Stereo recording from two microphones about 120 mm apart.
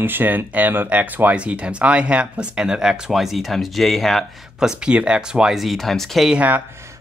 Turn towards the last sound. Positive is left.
turn(degrees=-10)  # may be behind; listen again after turning